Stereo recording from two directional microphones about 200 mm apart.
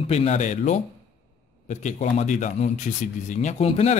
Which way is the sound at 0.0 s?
30° left (ahead or behind).